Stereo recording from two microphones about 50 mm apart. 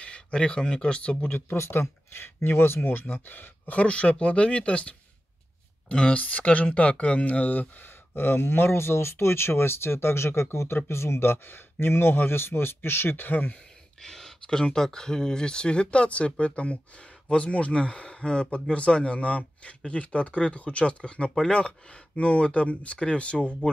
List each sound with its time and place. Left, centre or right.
0.0 s speech: centre
1.6 s speech: left
8.1 s speech: left
14.0 s speech: centre; by 23.8 s left